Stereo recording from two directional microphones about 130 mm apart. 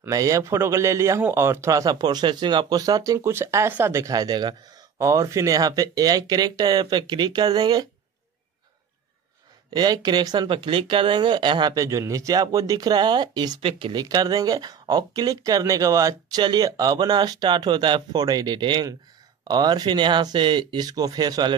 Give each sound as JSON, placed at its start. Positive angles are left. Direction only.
{"t": 0.0, "sound": "a man's voice", "side_deg": -25}
{"t": 9.7, "sound": "speech", "side_deg": -30}
{"t": 14.0, "sound": "speech", "side_deg": -30}